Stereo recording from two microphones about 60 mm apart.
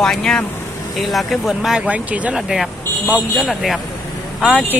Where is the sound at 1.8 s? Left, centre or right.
Right.